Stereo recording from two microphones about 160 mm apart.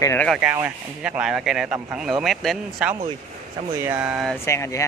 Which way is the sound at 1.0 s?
5° right (ahead or behind).